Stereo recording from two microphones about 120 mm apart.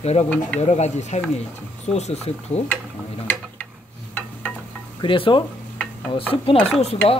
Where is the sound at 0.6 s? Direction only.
65° left (ahead or behind).